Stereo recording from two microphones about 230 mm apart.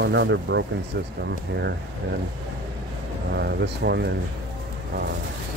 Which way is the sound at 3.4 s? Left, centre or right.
Right.